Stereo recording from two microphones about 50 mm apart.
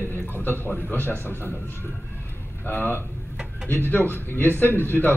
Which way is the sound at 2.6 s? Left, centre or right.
Left.